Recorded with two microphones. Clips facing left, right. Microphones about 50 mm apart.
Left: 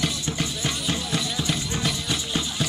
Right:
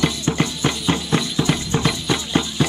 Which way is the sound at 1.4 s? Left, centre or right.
Right.